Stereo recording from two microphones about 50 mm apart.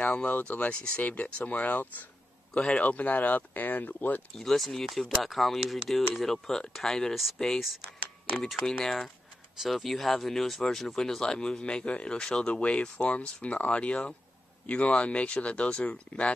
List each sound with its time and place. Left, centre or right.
0.3 s speech: left
2.5 s speech: centre
2.9 s speech: left
4.4 s speech: centre
8.6 s speech: centre; by 16.3 s left